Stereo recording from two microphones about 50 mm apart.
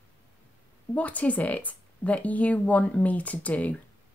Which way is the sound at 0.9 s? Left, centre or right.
Left.